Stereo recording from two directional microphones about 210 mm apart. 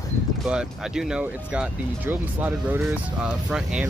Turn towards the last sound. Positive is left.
turn(degrees=-5)  # may be behind; listen again after turning